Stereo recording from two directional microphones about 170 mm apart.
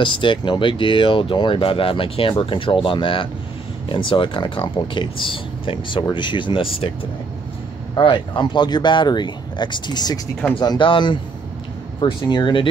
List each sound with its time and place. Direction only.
0.0 s speech: 30° left (ahead or behind)
7.9 s speech: 25° left (ahead or behind)